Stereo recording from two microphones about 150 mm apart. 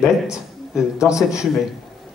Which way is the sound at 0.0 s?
5° right (ahead or behind).